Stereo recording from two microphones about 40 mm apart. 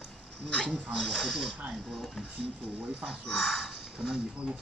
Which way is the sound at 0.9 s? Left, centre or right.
Centre.